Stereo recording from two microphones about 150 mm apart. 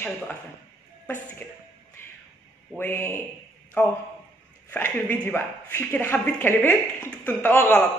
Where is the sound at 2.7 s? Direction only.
15° left (ahead or behind).